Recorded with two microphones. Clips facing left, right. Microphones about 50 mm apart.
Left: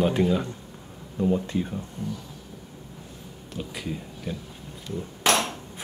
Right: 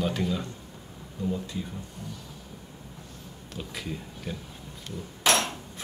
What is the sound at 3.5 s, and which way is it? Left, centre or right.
Speech, centre.